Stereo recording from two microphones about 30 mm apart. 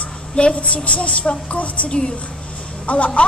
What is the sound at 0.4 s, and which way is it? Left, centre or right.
A woman's voice, left.